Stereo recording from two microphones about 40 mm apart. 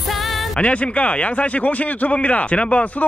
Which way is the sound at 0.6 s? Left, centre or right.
Left.